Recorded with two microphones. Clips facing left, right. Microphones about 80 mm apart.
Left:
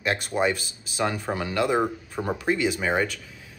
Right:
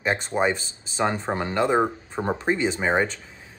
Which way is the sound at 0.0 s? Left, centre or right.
Right.